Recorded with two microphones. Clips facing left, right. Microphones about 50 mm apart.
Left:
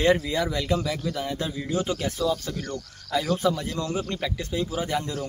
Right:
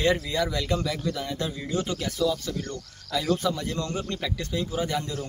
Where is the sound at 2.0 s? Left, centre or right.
Left.